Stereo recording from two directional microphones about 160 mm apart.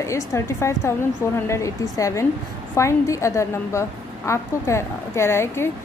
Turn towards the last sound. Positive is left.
turn(degrees=15)  # may be behind; listen again after turning